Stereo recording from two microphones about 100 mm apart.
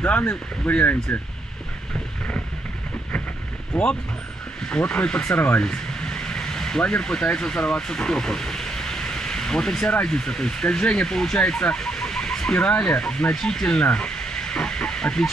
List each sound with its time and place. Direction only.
0.0 s speech: 15° left (ahead or behind)
3.7 s speech: 15° left (ahead or behind)